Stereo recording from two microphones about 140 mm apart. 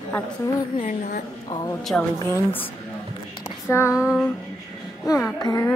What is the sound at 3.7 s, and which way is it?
Speech, 20° left (ahead or behind).